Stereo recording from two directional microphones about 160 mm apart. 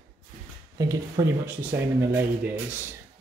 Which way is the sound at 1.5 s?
10° right (ahead or behind).